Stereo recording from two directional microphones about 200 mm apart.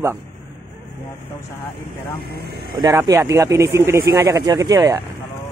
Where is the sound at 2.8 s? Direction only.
15° right (ahead or behind).